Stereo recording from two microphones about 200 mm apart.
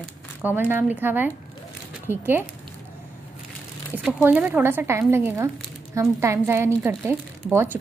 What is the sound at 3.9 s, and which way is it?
A woman's voice, 5° right (ahead or behind).